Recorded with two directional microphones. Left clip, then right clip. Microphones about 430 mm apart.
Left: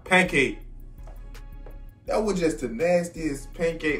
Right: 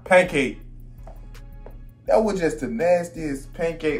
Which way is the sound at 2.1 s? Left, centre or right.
Centre.